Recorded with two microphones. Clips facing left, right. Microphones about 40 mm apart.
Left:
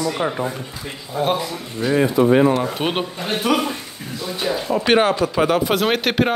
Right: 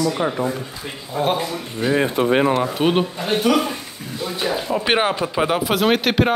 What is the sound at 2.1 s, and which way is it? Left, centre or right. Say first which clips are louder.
Speech: left 3 dB; right.